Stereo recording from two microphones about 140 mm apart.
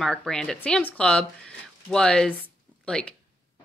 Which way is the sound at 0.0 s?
5° left (ahead or behind).